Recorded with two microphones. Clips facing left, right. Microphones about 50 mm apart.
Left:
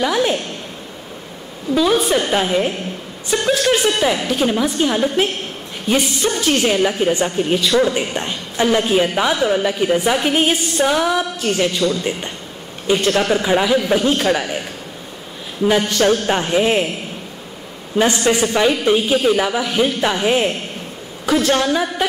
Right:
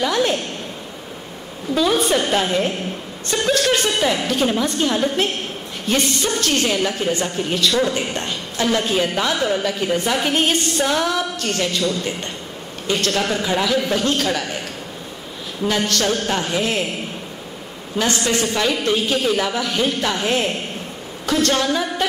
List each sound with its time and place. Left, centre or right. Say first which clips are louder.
0.0 s a woman's voice: left 2 dB; centre
1.8 s a woman's voice: left 2 dB; centre
15.6 s a man's voice: left 5 dB; centre
17.9 s a woman's voice: left 4 dB; left